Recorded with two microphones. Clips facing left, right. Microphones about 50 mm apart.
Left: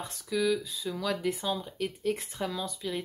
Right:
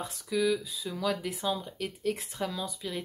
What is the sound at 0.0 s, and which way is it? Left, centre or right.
Speech, centre.